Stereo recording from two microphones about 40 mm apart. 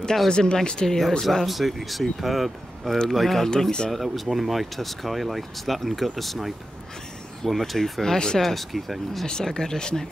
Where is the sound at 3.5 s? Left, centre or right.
Centre.